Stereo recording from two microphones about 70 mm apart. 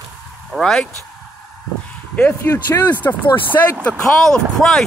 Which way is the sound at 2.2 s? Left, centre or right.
Left.